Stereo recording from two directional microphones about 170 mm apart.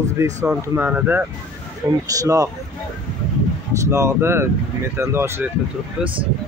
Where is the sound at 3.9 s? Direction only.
15° right (ahead or behind).